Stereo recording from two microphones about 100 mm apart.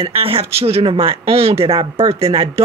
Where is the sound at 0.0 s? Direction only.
70° right (ahead or behind).